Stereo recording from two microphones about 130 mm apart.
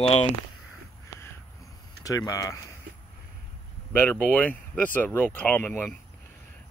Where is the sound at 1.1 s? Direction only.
25° left (ahead or behind).